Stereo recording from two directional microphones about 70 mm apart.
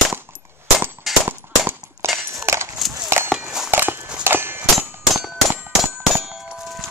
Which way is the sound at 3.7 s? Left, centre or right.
Right.